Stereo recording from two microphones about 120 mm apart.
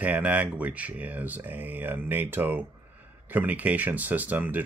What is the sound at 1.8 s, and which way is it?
Speech, 15° right (ahead or behind).